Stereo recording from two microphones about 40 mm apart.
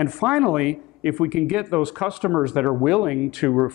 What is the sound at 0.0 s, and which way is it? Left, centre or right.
Speech, centre.